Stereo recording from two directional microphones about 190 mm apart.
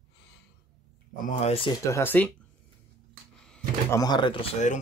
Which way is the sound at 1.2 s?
30° left (ahead or behind).